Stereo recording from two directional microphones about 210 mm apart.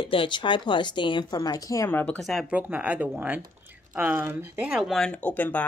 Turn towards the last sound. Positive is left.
turn(degrees=5)  # may be behind; listen again after turning